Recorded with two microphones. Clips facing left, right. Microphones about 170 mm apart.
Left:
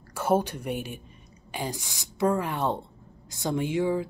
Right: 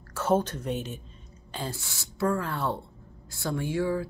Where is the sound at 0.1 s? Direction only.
10° left (ahead or behind).